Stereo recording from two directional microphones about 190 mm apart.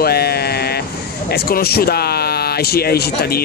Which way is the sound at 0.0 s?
55° left (ahead or behind).